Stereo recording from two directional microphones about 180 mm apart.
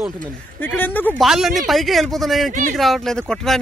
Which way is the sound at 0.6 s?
10° left (ahead or behind).